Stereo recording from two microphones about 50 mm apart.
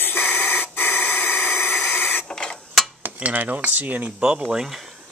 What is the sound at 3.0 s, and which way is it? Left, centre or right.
Cutlery, right.